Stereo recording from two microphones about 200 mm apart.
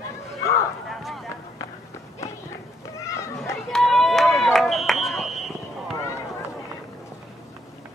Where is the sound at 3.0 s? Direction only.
15° left (ahead or behind).